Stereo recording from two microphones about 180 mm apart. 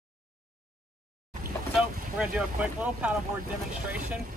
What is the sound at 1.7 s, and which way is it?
Speech, 5° right (ahead or behind).